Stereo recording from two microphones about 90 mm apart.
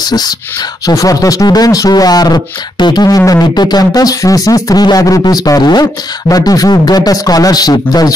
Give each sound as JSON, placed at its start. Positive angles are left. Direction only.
{"t": 0.0, "sound": "speech", "side_deg": 50}
{"t": 3.2, "sound": "speech", "side_deg": 40}